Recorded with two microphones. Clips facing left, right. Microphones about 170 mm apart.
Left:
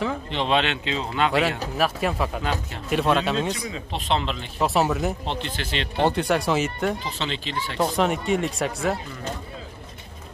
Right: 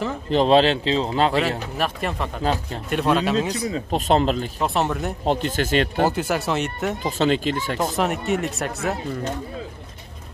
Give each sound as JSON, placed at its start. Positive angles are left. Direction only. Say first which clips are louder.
{"t": 0.3, "sound": "a man's voice", "louder": "right 9 dB", "side_deg": -40}
{"t": 1.8, "sound": "speech", "louder": "left 4 dB", "side_deg": 0}
{"t": 3.7, "sound": "speech", "louder": "right 6 dB", "side_deg": -45}
{"t": 4.6, "sound": "speech", "louder": "left 1 dB", "side_deg": 0}
{"t": 5.2, "sound": "speech", "louder": "right 8 dB", "side_deg": -45}
{"t": 6.0, "sound": "speech", "louder": "left 1 dB", "side_deg": -5}
{"t": 7.0, "sound": "speech", "louder": "right 10 dB", "side_deg": -45}
{"t": 7.8, "sound": "speech", "louder": "left 3 dB", "side_deg": 0}